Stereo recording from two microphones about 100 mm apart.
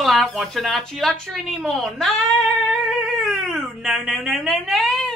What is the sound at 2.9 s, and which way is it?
Cat, centre (ahead or behind).